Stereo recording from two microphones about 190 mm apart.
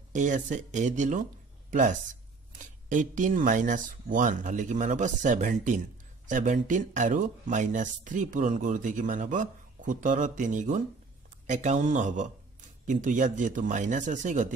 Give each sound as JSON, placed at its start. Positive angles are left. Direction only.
{"t": 0.1, "sound": "speech", "side_deg": -40}